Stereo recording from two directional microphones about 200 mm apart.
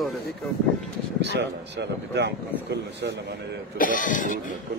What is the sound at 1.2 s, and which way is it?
Speech, 60° right (ahead or behind).